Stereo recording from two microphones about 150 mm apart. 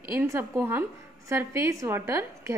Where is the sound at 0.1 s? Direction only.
15° right (ahead or behind).